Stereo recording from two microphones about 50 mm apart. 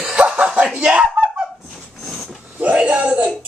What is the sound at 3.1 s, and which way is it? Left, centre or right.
Music, centre.